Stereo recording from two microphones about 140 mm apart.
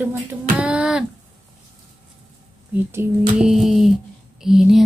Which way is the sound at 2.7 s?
15° right (ahead or behind).